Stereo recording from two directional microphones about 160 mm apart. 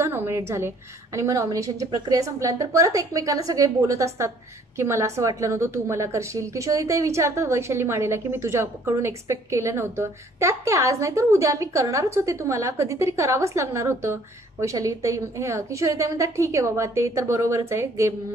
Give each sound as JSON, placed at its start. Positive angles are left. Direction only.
{"t": 0.0, "sound": "a woman's voice", "side_deg": -15}